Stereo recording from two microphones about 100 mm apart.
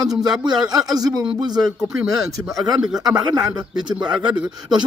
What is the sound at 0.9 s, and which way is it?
Speech, 40° right (ahead or behind).